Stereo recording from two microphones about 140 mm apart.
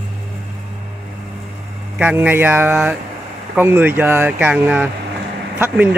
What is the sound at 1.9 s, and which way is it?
Speech, 10° right (ahead or behind).